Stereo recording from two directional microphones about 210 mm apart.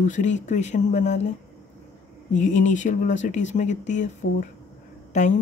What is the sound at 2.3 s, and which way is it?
Speech, 35° left (ahead or behind).